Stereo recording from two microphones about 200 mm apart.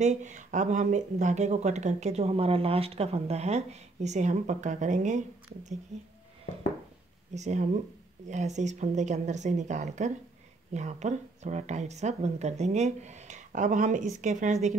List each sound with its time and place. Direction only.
0.0 s speech: 35° right (ahead or behind)
7.3 s speech: 35° right (ahead or behind)